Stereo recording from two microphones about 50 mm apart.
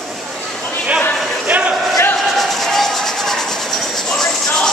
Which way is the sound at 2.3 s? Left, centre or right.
Centre.